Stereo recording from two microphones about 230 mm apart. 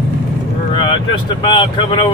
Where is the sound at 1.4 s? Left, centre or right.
Left.